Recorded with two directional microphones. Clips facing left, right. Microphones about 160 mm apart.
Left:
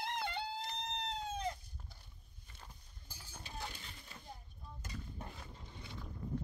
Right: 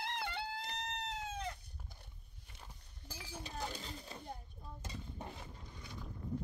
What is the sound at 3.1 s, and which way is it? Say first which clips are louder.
Chink: right 8 dB; 90° right.